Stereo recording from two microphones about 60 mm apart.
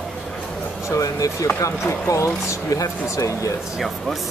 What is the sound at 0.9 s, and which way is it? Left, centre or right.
Speech, left.